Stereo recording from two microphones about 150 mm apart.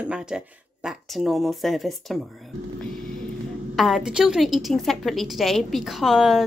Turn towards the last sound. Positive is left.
turn(degrees=0)  # may be behind; listen again after turning